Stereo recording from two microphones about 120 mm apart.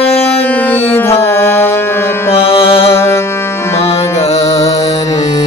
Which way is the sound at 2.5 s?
50° left (ahead or behind).